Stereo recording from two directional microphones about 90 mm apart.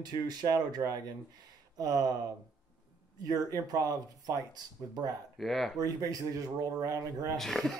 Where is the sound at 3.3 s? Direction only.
45° right (ahead or behind).